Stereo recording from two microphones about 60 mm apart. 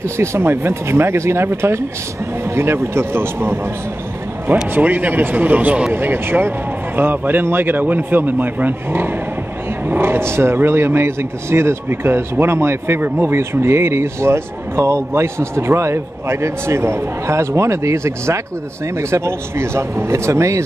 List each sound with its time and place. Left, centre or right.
0.2 s speech: right
4.7 s speech: right
5.9 s a man's voice: right